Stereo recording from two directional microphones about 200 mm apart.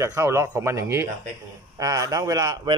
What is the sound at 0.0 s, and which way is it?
Speech, 15° right (ahead or behind).